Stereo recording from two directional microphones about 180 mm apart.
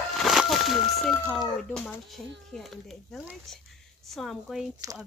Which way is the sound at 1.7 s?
5° left (ahead or behind).